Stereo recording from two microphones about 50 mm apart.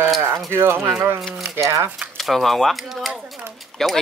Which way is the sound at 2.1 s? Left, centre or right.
Centre.